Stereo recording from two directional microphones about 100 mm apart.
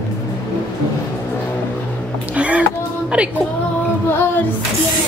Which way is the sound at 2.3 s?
15° right (ahead or behind).